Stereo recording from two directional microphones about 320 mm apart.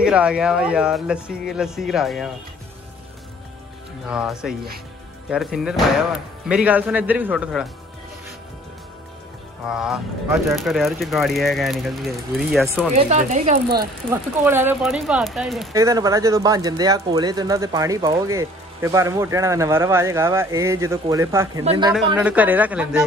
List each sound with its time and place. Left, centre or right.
0.0 s speech: centre
4.1 s speech: centre
9.7 s speech: centre
12.9 s speech: right
14.1 s speech: centre